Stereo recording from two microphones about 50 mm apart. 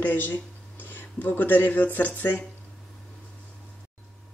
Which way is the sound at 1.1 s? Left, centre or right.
Left.